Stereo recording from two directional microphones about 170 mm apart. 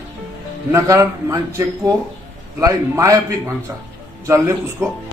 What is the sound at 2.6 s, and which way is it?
Speech, 20° right (ahead or behind).